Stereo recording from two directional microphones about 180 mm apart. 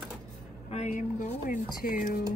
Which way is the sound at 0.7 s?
40° left (ahead or behind).